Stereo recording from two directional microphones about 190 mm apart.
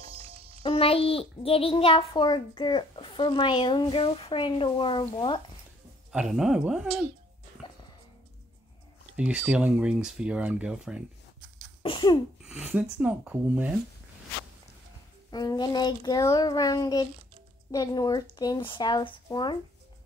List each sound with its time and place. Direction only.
0.6 s a child's voice: 30° left (ahead or behind)
6.1 s speech: centre (ahead or behind)
9.1 s speech: 5° right (ahead or behind)
11.8 s sneeze: 25° left (ahead or behind)
12.4 s speech: 5° right (ahead or behind)
15.3 s a child's voice: 20° left (ahead or behind)